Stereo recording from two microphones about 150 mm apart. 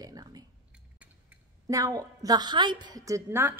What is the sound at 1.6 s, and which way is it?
A woman's voice, 20° right (ahead or behind).